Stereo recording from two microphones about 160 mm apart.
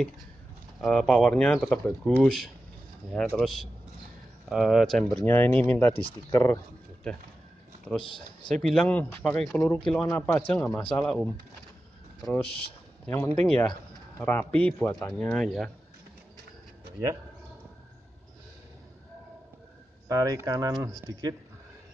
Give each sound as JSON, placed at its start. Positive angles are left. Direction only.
{"t": 0.7, "sound": "speech", "side_deg": 0}
{"t": 5.2, "sound": "speech", "side_deg": 10}
{"t": 8.0, "sound": "speech", "side_deg": 30}
{"t": 8.5, "sound": "speech", "side_deg": 5}
{"t": 12.2, "sound": "speech", "side_deg": 5}
{"t": 13.0, "sound": "speech", "side_deg": 15}
{"t": 15.2, "sound": "speech", "side_deg": 5}
{"t": 20.1, "sound": "speech", "side_deg": -20}